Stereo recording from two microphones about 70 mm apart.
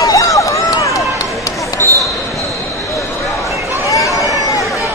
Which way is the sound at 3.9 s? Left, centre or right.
Left.